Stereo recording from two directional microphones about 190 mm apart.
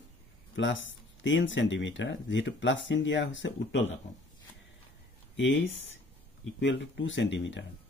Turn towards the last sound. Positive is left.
turn(degrees=70)  # may be behind; listen again after turning